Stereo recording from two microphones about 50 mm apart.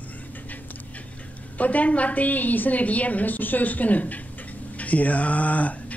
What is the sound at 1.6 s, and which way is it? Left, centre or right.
Speech, left.